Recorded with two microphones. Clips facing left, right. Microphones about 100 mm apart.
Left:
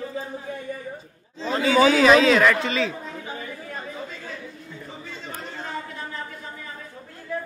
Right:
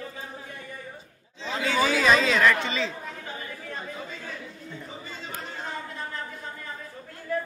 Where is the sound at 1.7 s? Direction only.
55° left (ahead or behind).